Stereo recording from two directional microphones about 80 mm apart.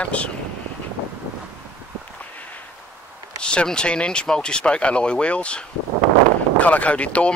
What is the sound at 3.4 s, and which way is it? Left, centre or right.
Speech, centre.